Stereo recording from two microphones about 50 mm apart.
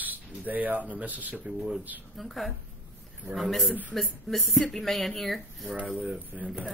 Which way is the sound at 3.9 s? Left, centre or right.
Centre.